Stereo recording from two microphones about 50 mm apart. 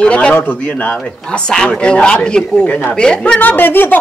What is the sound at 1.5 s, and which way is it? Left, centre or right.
A woman's voice, centre.